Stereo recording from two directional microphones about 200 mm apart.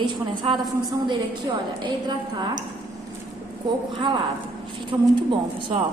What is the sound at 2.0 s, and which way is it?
Speech, 20° right (ahead or behind).